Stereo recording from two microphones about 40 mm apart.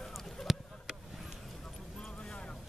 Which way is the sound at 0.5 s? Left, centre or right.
Centre.